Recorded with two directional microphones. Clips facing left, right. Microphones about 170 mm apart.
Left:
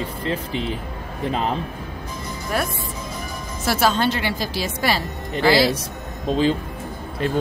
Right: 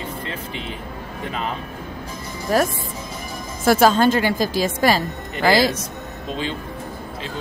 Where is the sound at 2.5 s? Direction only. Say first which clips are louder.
Right 6 dB; 35° right (ahead or behind).